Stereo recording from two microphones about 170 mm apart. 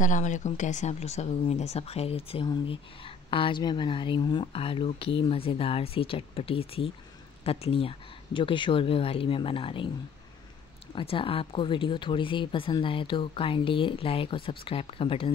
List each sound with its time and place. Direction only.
0.0 s speech: 45° left (ahead or behind); by 9.8 s 30° left (ahead or behind)
11.0 s speech: 30° left (ahead or behind)